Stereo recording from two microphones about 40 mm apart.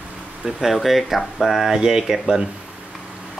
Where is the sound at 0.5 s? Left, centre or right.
Centre.